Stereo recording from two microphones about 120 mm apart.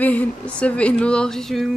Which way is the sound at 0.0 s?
10° left (ahead or behind).